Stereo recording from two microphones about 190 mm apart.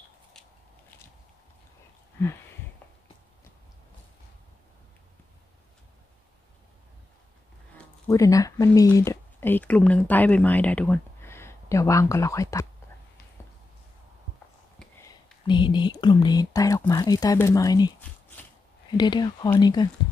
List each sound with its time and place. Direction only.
8.1 s speech: 15° left (ahead or behind)
14.8 s a sound: 5° left (ahead or behind)
15.4 s speech: 25° left (ahead or behind)
18.9 s speech: 20° left (ahead or behind)